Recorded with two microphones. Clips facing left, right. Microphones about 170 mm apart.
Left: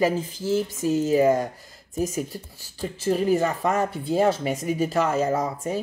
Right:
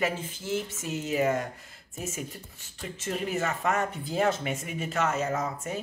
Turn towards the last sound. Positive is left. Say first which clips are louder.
# left 6 dB
turn(degrees=35)  # may be behind; listen again after turning